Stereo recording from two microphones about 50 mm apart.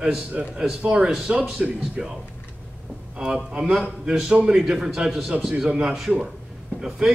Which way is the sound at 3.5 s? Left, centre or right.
Centre.